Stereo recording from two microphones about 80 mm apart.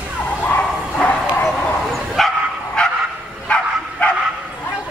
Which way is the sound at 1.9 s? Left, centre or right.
Centre.